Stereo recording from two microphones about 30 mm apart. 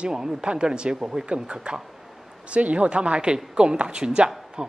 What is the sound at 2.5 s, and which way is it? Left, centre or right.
Speech, right.